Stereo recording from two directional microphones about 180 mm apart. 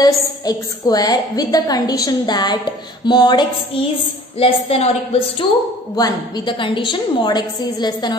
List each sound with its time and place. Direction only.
0.0 s a woman's voice: 20° left (ahead or behind)